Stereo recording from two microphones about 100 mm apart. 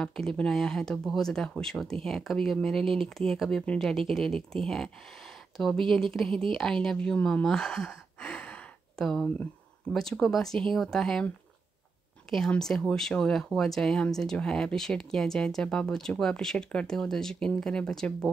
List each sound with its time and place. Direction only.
0.0 s speech: 5° left (ahead or behind)
7.4 s gasp: 5° left (ahead or behind)
9.9 s speech: 5° left (ahead or behind)
12.3 s speech: 5° left (ahead or behind)